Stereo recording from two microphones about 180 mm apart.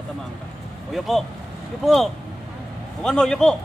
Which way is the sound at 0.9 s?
Centre (ahead or behind).